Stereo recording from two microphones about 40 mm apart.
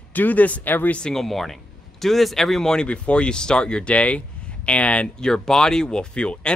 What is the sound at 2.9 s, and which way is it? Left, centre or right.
Speech, left.